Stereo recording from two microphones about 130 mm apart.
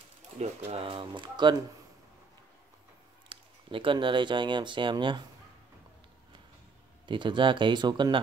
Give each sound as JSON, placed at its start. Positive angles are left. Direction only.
{"t": 0.7, "sound": "speech", "side_deg": -45}
{"t": 3.3, "sound": "speech", "side_deg": -40}
{"t": 7.1, "sound": "speech", "side_deg": -40}